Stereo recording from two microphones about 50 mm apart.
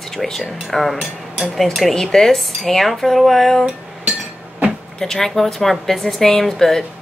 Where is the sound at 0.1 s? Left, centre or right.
Centre.